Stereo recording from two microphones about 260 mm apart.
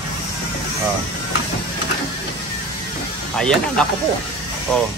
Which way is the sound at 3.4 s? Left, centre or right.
Centre.